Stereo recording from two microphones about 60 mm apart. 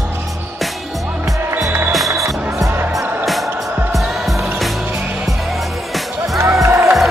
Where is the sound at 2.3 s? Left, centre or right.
Right.